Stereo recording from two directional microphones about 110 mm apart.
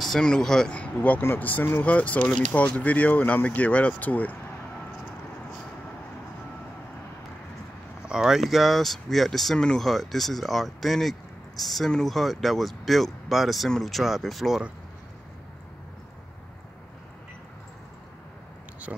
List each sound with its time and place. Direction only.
0.0 s speech: 5° left (ahead or behind)
8.1 s speech: 5° right (ahead or behind)